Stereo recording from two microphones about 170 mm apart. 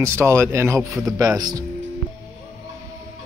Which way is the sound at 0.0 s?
15° right (ahead or behind).